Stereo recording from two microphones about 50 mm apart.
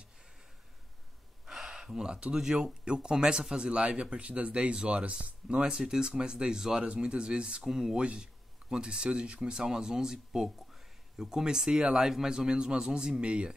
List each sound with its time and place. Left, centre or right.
1.4 s speech: centre